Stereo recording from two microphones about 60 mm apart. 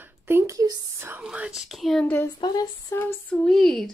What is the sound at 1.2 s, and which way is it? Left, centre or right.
Speech, right.